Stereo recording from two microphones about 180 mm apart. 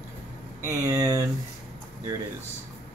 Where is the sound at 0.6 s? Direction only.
15° right (ahead or behind).